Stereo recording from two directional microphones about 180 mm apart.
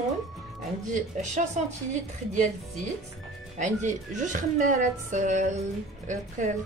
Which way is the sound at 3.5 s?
45° right (ahead or behind).